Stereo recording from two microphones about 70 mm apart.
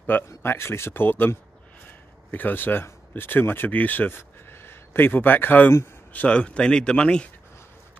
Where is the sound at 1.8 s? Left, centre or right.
Left.